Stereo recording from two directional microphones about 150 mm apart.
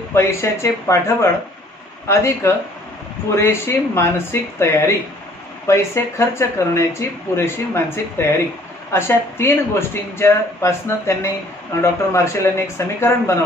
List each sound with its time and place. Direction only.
0.1 s a man's voice: 15° left (ahead or behind)